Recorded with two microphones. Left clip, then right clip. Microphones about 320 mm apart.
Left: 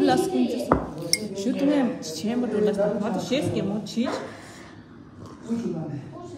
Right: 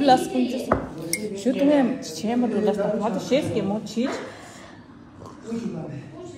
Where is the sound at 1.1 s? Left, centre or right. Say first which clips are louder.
Right 4 dB; centre.